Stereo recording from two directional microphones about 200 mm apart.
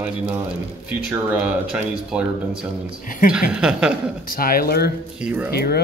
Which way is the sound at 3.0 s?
40° left (ahead or behind).